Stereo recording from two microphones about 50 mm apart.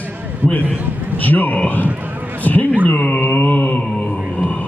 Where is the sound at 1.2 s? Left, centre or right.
Left.